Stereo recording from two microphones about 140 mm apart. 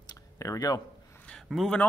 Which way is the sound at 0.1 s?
25° left (ahead or behind).